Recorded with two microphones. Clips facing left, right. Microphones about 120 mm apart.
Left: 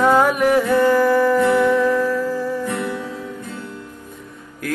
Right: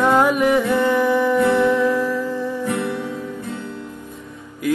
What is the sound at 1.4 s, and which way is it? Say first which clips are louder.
Music: left 1 dB; 20° right (ahead or behind).